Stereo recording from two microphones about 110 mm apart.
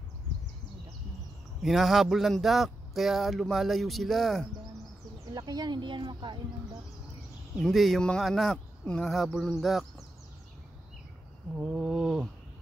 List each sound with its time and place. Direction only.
1.6 s speech: centre (ahead or behind)
5.3 s speech: 40° right (ahead or behind)
7.5 s speech: centre (ahead or behind)
11.5 s speech: 5° right (ahead or behind)